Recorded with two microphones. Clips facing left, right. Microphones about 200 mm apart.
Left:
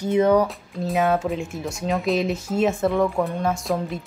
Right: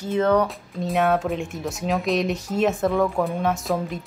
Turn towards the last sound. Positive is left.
turn(degrees=0)  # may be behind; listen again after turning